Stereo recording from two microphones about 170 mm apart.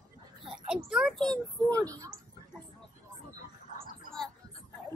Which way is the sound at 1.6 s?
20° right (ahead or behind).